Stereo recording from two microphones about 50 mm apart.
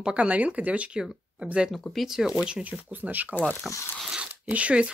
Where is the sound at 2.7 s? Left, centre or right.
Right.